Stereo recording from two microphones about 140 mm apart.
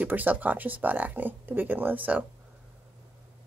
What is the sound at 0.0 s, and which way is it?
Speech, 10° right (ahead or behind).